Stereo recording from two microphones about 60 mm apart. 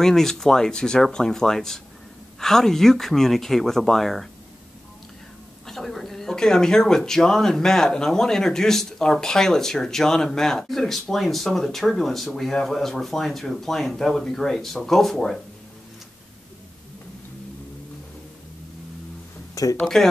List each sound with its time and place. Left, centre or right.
0.0 s speech: centre
5.7 s speech: centre
19.5 s a sound: left